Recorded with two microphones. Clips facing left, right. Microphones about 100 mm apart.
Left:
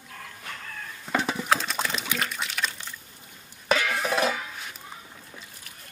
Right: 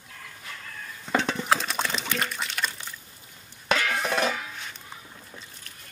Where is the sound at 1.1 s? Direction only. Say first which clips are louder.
Right 1 dB; 5° left (ahead or behind).